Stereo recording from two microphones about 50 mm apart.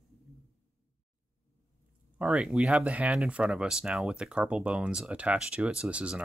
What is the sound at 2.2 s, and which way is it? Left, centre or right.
Speech, right.